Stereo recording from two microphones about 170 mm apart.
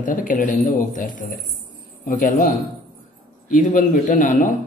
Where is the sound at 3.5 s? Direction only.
50° left (ahead or behind).